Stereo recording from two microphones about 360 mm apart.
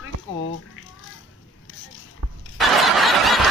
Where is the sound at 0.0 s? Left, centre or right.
Left.